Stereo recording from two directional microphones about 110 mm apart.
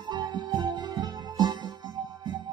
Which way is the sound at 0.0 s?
40° right (ahead or behind).